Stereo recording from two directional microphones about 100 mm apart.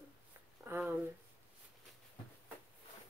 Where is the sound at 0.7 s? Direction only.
20° right (ahead or behind).